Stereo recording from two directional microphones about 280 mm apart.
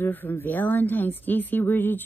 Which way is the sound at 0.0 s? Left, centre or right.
Centre.